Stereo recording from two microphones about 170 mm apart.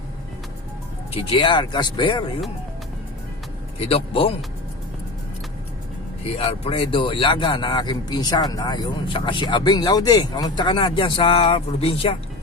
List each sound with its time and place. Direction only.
1.1 s a man's voice: 30° left (ahead or behind)
3.9 s speech: 35° left (ahead or behind)
6.2 s a man's voice: 35° left (ahead or behind)